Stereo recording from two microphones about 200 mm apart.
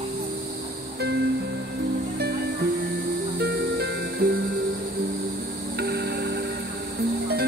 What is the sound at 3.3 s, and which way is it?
Music, 55° right (ahead or behind).